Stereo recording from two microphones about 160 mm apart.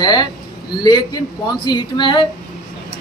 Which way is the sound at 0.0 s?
25° left (ahead or behind).